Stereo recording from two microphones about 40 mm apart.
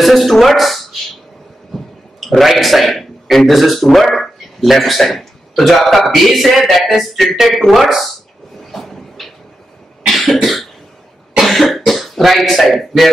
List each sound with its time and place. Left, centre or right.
0.0 s a man's voice: centre
8.7 s cupboard open or close: centre
10.0 s cough: centre
11.9 s speech: centre